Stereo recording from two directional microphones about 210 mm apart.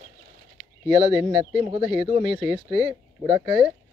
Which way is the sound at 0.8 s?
10° right (ahead or behind).